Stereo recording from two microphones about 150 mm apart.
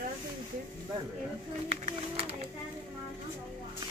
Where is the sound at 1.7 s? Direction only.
40° right (ahead or behind).